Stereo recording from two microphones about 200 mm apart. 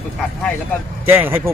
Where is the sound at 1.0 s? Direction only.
10° right (ahead or behind).